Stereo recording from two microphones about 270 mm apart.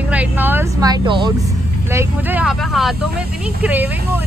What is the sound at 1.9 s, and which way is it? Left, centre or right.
A woman's voice, centre.